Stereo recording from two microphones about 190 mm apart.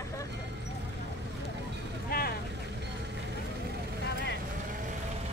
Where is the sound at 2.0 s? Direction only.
50° left (ahead or behind).